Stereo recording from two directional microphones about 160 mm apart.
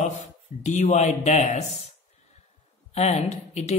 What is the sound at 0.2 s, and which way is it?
Speech, 45° left (ahead or behind).